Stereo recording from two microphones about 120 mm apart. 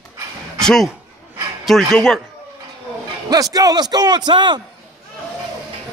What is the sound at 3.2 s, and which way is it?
A man's voice, 30° right (ahead or behind).